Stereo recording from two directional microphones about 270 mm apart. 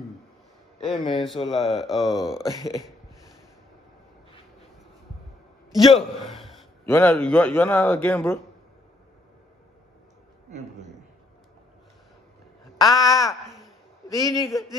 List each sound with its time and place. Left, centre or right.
0.8 s speech: centre
1.6 s speech: centre
2.4 s speech: centre
5.7 s a man's voice: centre
13.0 s speech: centre
14.5 s speech: centre